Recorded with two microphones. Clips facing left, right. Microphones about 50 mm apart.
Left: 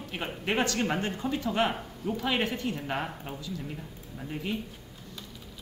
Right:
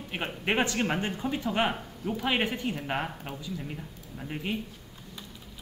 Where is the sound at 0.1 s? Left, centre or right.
Centre.